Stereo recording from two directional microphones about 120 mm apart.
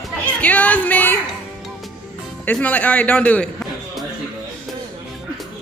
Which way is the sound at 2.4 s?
10° left (ahead or behind).